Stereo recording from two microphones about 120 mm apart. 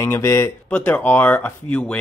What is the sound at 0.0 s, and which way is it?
Speech, 25° left (ahead or behind).